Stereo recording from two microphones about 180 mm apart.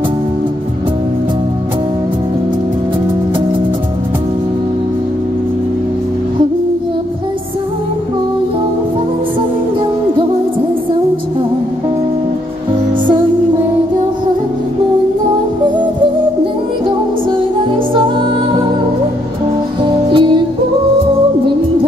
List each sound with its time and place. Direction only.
19.8 s music: 25° right (ahead or behind)